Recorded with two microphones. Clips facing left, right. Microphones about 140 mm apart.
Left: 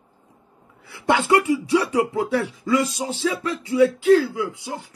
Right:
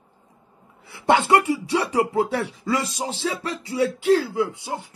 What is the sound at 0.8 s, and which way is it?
Speech, 25° right (ahead or behind).